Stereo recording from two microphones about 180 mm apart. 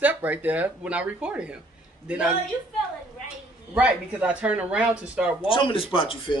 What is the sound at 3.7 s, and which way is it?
Speech, 5° right (ahead or behind).